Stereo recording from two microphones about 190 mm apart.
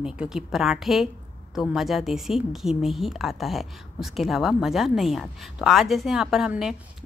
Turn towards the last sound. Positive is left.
turn(degrees=-5)  # may be behind; listen again after turning